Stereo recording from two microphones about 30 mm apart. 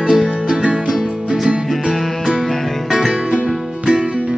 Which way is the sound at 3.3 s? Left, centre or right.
Right.